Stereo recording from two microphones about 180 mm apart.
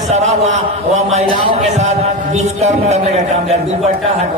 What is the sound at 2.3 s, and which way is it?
Speech, 40° right (ahead or behind).